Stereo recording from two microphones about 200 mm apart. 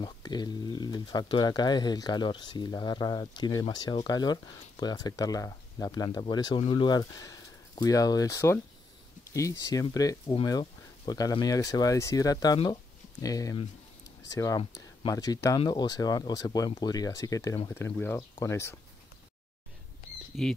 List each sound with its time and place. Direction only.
0.0 s speech: 20° left (ahead or behind)
20.3 s speech: 50° left (ahead or behind)